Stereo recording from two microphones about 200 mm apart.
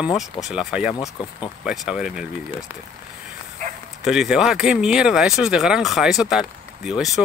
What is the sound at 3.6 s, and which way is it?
Bow-wow, 40° right (ahead or behind).